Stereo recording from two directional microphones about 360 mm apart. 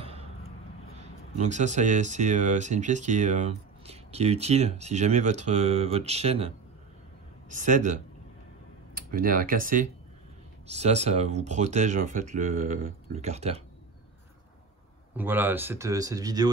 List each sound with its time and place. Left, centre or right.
1.4 s speech: centre
15.1 s speech: centre